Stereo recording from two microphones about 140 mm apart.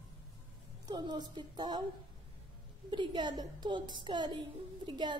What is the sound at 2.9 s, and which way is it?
A woman's voice, 35° right (ahead or behind).